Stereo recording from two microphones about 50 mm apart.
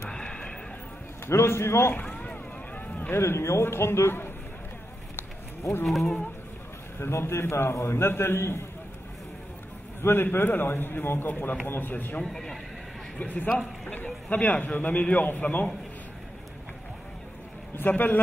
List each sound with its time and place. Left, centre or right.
0.1 s horse: centre
1.2 s a man's voice: left
2.0 s vehicle: left
3.1 s a man's voice: left
5.9 s speech: centre
7.0 s a man's voice: left
10.0 s a man's voice: left
12.2 s speech: centre
13.2 s a man's voice: left
17.7 s a man's voice: left